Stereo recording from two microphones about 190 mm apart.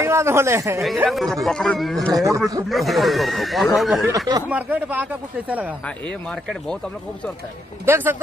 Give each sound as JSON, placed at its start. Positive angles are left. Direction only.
{"t": 0.0, "sound": "a man's voice", "side_deg": -15}
{"t": 1.0, "sound": "speech", "side_deg": 0}
{"t": 2.1, "sound": "a man's voice", "side_deg": -15}
{"t": 2.7, "sound": "a man's voice", "side_deg": 0}
{"t": 7.8, "sound": "a man's voice", "side_deg": -10}